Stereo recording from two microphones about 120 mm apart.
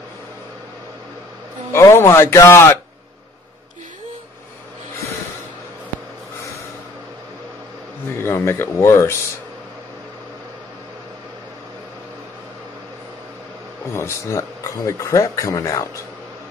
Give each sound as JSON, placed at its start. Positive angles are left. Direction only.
{"t": 1.7, "sound": "speech", "side_deg": 20}
{"t": 8.1, "sound": "speech", "side_deg": 20}
{"t": 13.9, "sound": "speech", "side_deg": 25}